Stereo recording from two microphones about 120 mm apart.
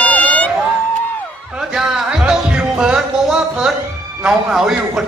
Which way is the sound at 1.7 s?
5° right (ahead or behind).